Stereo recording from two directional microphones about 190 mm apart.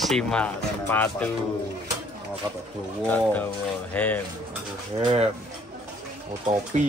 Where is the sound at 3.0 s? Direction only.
10° left (ahead or behind).